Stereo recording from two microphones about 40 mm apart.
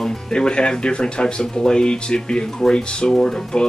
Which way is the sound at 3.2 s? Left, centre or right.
Centre.